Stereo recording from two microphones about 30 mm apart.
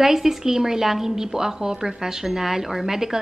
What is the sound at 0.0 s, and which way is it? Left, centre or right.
Speech, centre.